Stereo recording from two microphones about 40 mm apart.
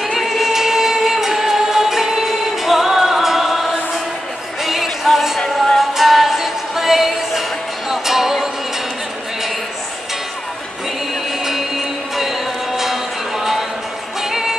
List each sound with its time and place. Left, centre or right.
0.0 s singing: centre
4.6 s music: centre
12.2 s music: centre